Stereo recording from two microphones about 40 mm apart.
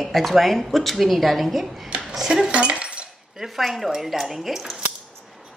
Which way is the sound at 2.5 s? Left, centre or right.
Right.